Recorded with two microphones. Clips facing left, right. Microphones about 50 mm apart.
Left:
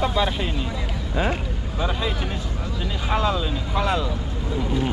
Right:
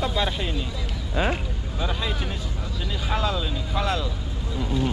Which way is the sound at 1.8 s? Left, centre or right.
Centre.